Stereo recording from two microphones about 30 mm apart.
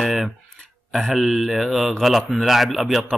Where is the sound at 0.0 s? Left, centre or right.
Centre.